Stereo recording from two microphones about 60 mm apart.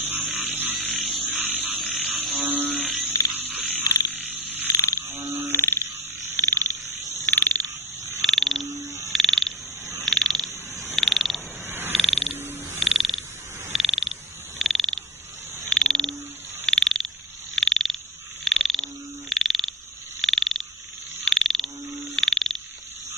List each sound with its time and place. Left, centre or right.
0.0 s a sound: right
1.1 s frog: right
2.3 s electric toothbrush: right
3.3 s frog: right
4.6 s frog: left
5.0 s frog: right
5.5 s frog: left
8.2 s frog: centre
8.6 s frog: right
9.1 s frog: centre
11.6 s frog: right
11.9 s a sound: centre
12.7 s frog: centre